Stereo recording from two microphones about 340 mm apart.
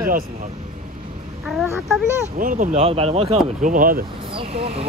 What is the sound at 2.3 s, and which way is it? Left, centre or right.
Speech, right.